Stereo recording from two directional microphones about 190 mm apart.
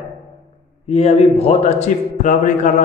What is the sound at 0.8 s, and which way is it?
A man's voice, 35° left (ahead or behind).